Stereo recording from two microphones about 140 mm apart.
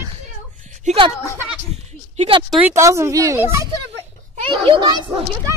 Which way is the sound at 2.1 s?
45° right (ahead or behind).